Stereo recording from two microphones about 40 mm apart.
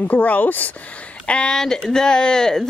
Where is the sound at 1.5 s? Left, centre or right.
Centre.